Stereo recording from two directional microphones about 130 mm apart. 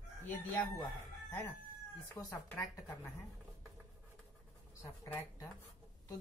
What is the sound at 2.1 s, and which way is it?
Speech, 20° left (ahead or behind).